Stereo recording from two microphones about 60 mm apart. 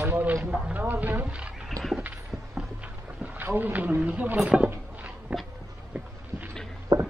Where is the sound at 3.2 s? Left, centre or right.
Right.